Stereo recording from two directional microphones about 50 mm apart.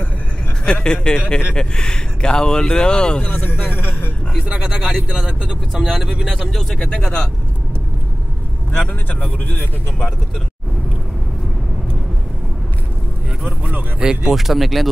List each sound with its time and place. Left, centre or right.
0.8 s speech: centre
3.4 s speech: left
4.6 s speech: centre
8.7 s speech: left
13.9 s speech: centre
14.3 s speech: centre